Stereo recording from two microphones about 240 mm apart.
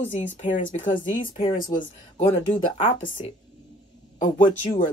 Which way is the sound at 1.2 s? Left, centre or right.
Centre.